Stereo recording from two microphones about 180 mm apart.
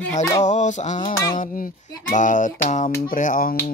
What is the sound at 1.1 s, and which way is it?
Speech, 20° left (ahead or behind).